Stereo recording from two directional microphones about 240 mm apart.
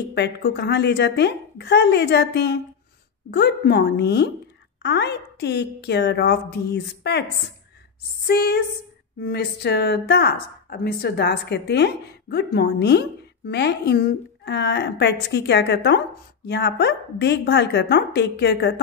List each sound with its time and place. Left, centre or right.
0.1 s speech: left
8.3 s a sound: left
9.2 s speech: left